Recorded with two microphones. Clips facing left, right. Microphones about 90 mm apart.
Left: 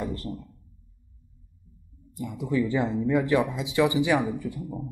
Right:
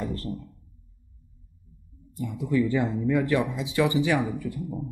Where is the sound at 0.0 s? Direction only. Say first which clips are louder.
Even; 20° left (ahead or behind).